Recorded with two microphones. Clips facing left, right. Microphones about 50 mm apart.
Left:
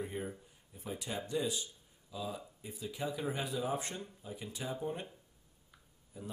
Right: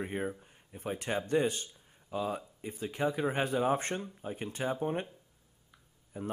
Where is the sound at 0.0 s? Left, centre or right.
Right.